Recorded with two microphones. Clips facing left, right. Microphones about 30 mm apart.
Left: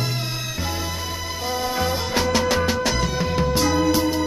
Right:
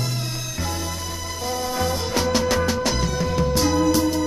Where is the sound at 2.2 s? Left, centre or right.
Centre.